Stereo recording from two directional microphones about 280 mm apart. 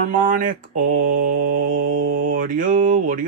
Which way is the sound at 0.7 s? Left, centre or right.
Right.